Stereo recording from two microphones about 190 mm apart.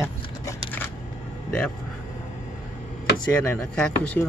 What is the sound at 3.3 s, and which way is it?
Speech, 5° left (ahead or behind).